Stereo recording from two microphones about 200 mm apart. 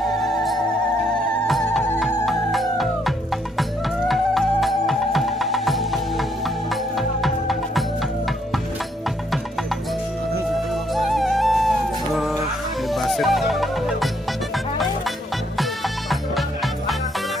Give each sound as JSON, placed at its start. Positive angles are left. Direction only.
{"t": 0.2, "sound": "music", "side_deg": 0}
{"t": 4.1, "sound": "music", "side_deg": 0}
{"t": 11.0, "sound": "music", "side_deg": 0}
{"t": 12.9, "sound": "music", "side_deg": 0}
{"t": 16.1, "sound": "music", "side_deg": 0}